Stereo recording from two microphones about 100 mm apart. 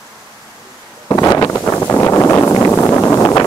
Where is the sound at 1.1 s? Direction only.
35° left (ahead or behind).